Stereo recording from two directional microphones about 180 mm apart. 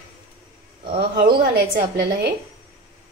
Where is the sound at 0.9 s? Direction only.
60° right (ahead or behind).